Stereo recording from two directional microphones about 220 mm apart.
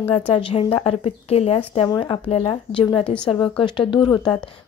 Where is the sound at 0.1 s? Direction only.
25° left (ahead or behind).